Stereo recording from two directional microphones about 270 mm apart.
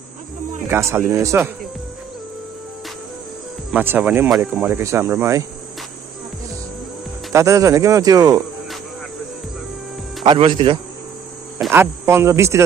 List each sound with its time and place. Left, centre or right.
0.7 s speech: centre
3.7 s speech: centre
7.3 s speech: centre
10.2 s speech: centre